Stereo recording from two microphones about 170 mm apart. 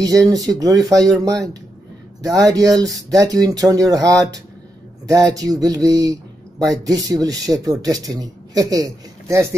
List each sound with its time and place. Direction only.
0.0 s speech: 20° right (ahead or behind)
2.2 s speech: 20° right (ahead or behind)